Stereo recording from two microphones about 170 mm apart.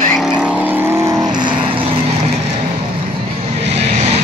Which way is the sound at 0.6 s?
10° right (ahead or behind).